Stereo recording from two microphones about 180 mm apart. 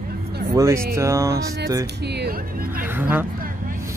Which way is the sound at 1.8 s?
65° right (ahead or behind).